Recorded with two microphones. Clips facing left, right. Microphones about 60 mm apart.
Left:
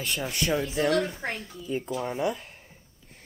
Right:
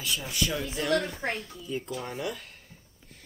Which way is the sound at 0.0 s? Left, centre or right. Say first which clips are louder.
Left 2 dB; left.